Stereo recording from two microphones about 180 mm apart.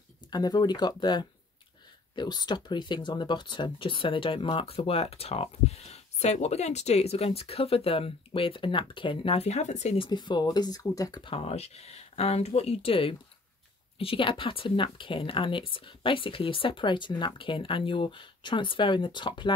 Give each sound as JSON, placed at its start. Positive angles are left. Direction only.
{"t": 0.3, "sound": "speech", "side_deg": 20}
{"t": 10.0, "sound": "speech", "side_deg": 25}